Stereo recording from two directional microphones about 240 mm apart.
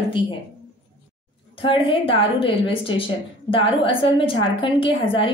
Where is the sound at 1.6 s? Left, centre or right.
Left.